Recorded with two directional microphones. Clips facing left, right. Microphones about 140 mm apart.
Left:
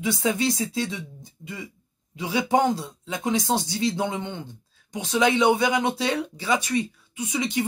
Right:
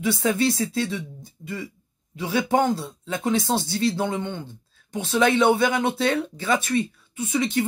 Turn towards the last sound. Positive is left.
turn(degrees=15)  # may be behind; listen again after turning